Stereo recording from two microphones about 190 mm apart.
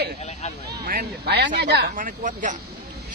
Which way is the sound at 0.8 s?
55° right (ahead or behind).